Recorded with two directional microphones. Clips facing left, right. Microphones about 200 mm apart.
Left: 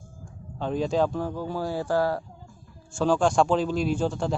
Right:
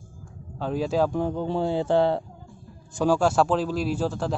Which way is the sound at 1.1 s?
20° right (ahead or behind).